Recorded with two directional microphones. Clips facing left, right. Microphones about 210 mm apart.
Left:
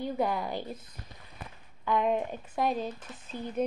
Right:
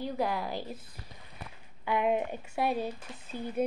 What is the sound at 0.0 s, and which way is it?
Speech, centre (ahead or behind).